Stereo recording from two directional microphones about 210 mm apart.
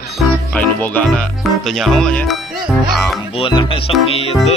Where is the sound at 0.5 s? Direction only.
5° left (ahead or behind).